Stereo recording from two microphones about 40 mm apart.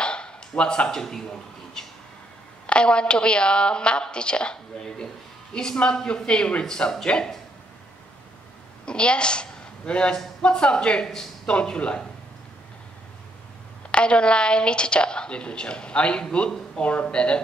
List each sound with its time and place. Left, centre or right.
0.0 s a sound: left
1.8 s speech: centre
2.6 s a woman's voice: left
8.8 s a woman's voice: left
13.9 s a woman's voice: left